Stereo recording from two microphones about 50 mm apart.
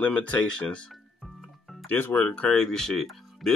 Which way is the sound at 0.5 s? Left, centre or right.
Centre.